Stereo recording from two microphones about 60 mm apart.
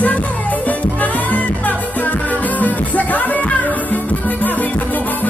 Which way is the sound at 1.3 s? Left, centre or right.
Left.